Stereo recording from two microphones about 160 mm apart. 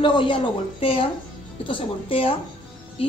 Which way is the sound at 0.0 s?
30° left (ahead or behind).